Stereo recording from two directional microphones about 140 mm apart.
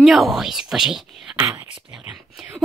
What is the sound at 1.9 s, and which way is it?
Speech, 5° right (ahead or behind).